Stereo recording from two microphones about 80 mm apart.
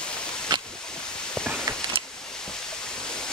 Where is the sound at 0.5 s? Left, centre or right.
Right.